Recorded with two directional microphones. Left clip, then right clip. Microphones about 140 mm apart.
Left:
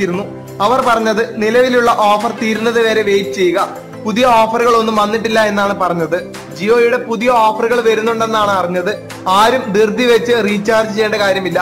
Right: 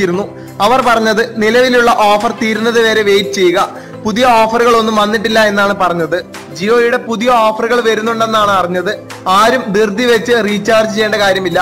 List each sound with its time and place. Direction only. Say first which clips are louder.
0.0 s a man's voice: right 3 dB; 35° right (ahead or behind)
6.6 s a man's voice: right 1 dB; 15° right (ahead or behind)